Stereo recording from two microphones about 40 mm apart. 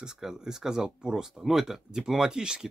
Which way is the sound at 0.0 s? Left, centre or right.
Centre.